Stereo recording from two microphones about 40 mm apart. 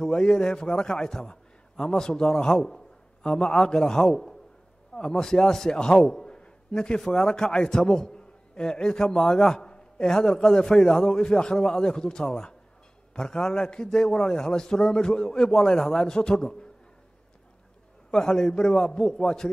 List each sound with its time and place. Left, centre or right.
0.0 s a man's voice: centre
9.4 s a sound: centre
10.0 s a man's voice: centre
18.1 s a man's voice: centre